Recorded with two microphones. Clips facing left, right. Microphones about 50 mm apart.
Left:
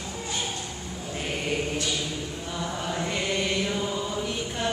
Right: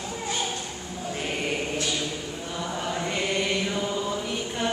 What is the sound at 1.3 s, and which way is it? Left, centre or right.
Chant, centre.